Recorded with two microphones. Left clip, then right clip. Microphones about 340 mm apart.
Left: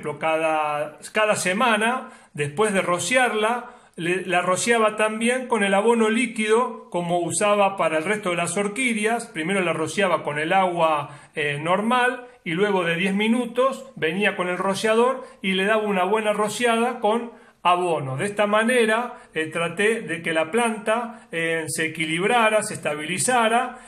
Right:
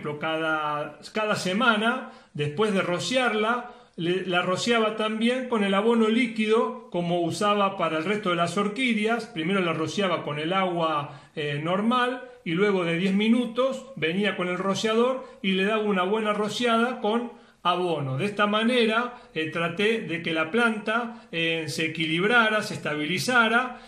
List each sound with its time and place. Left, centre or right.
0.2 s speech: left